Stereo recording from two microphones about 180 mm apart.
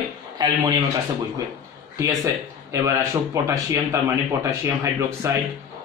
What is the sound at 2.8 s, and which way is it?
Speech, 15° right (ahead or behind).